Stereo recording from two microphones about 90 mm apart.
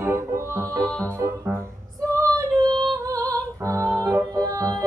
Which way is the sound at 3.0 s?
40° right (ahead or behind).